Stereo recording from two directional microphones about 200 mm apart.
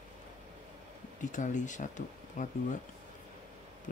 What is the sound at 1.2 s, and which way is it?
Speech, 40° left (ahead or behind).